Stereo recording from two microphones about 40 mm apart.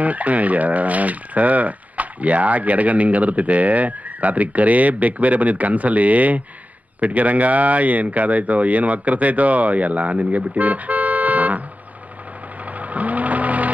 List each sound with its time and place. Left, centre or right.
0.0 s speech: right
12.7 s sewing machine: right